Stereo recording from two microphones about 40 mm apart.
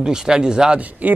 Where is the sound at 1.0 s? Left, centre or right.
Right.